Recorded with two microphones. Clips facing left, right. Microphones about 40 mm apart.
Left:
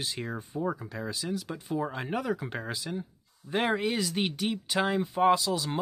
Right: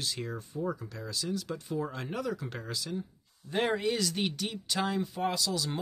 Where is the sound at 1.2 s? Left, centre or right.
Centre.